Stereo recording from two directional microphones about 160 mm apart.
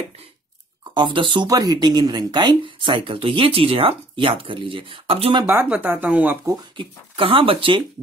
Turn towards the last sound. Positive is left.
turn(degrees=-30)  # may be behind; listen again after turning